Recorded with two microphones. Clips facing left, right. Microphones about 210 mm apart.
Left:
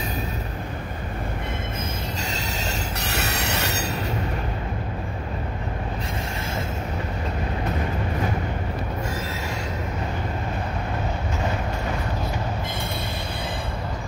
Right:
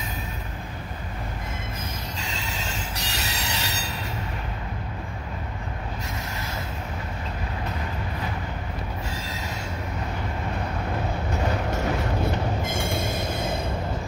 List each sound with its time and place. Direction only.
2.2 s train: 45° left (ahead or behind)
3.0 s train wheels squealing: 60° left (ahead or behind)